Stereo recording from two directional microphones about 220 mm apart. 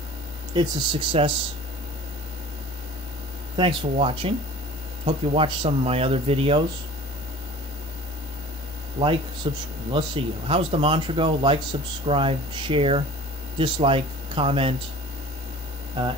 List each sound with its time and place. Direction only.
0.6 s speech: 25° right (ahead or behind)
3.5 s speech: 25° right (ahead or behind)
9.0 s speech: 20° right (ahead or behind)